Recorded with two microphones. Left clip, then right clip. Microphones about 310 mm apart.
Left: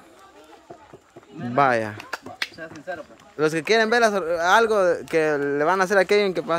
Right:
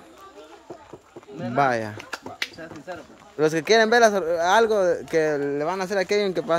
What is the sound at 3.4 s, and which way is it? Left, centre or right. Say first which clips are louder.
Speech: right 1 dB; centre.